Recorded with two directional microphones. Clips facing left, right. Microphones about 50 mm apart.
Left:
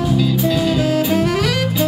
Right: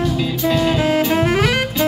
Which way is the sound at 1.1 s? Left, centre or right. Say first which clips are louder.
Right 1 dB; right.